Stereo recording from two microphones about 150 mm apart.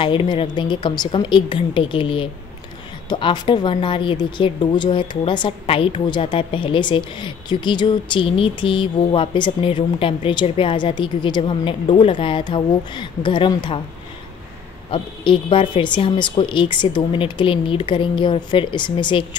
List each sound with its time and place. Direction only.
0.0 s speech: 35° left (ahead or behind)
14.9 s speech: 35° left (ahead or behind)